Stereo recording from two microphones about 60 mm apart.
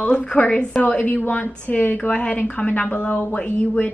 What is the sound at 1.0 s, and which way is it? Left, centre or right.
A woman's voice, left.